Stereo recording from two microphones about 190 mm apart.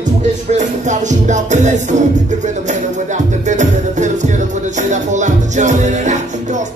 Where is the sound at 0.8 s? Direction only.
40° right (ahead or behind).